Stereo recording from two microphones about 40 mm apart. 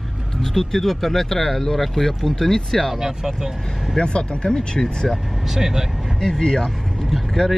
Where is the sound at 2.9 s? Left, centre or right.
Centre.